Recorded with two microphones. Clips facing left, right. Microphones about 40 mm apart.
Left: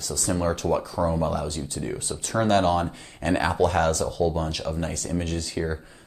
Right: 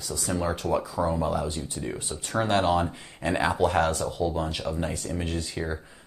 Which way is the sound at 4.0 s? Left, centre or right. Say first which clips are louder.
Left 3 dB; right.